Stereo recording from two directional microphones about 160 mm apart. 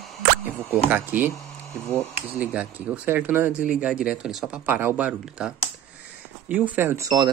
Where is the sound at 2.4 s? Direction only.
10° right (ahead or behind).